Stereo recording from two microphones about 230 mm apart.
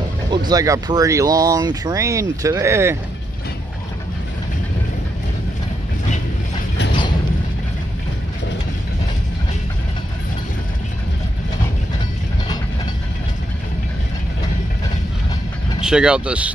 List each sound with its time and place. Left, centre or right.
0.5 s speech: centre
15.8 s speech: centre